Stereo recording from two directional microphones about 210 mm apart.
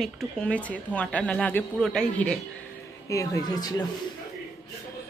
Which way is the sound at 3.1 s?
15° left (ahead or behind).